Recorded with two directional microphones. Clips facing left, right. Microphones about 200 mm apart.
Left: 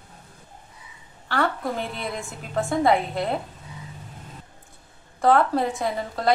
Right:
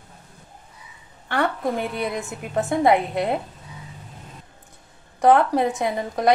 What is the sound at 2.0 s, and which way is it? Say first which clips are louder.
A woman's voice: right 5 dB; 20° right (ahead or behind).